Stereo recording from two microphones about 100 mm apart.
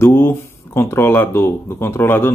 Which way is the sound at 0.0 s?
25° left (ahead or behind).